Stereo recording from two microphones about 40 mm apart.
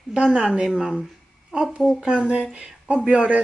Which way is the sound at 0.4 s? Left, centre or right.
Centre.